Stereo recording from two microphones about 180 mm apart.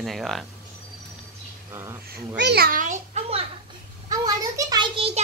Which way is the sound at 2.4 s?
65° right (ahead or behind).